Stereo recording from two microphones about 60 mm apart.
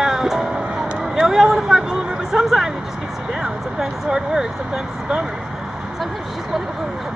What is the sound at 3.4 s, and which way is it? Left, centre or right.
Speech, centre.